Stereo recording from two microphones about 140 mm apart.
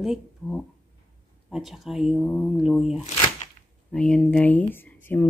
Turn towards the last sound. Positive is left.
turn(degrees=15)  # may be behind; listen again after turning